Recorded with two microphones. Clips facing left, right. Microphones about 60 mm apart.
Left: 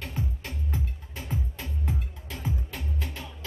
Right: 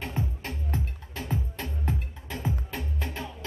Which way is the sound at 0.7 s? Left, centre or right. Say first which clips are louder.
Right 2 dB; right.